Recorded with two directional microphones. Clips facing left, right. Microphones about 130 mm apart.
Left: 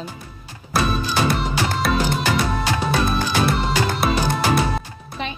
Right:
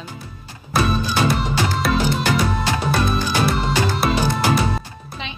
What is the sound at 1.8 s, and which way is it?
Music, centre (ahead or behind).